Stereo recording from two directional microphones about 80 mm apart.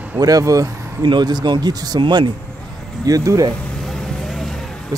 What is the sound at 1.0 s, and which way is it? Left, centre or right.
Speech, right.